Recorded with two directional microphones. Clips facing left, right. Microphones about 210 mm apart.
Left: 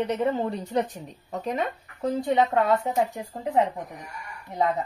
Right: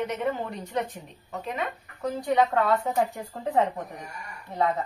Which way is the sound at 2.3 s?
20° left (ahead or behind).